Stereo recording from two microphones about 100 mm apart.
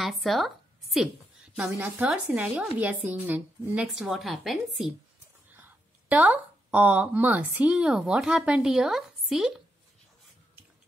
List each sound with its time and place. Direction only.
0.0 s speech: centre (ahead or behind)
2.8 s speech: 15° right (ahead or behind)
5.5 s speech: 15° right (ahead or behind)